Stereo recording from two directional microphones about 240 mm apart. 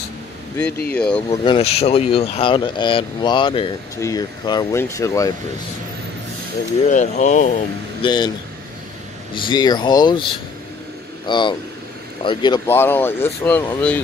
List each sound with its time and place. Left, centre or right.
0.8 s speech: centre
1.3 s speech: left
6.9 s speech: left
8.0 s speech: centre
9.3 s speech: centre